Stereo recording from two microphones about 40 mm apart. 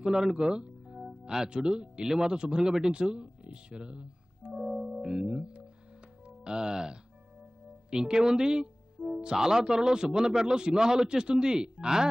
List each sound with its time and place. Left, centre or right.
0.0 s a man's voice: centre
4.5 s music: centre
5.0 s a man's voice: centre